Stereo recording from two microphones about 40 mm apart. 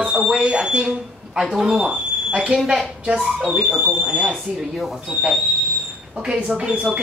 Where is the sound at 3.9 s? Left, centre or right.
Centre.